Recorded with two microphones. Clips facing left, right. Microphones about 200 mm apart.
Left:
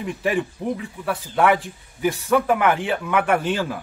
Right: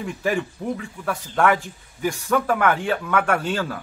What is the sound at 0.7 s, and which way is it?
Speech, 5° left (ahead or behind).